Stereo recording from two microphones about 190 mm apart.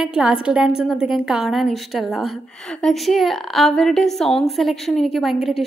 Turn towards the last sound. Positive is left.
turn(degrees=0)  # may be behind; listen again after turning